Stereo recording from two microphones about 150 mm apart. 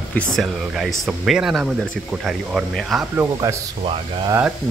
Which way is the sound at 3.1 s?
20° right (ahead or behind).